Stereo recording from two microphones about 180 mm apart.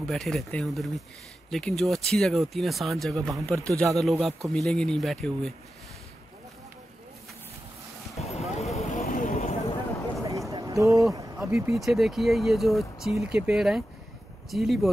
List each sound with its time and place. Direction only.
0.0 s speech: centre (ahead or behind)
8.2 s vehicle: 35° left (ahead or behind)
9.0 s vehicle: 50° left (ahead or behind)
10.5 s a sound: 20° right (ahead or behind)
11.3 s speech: centre (ahead or behind)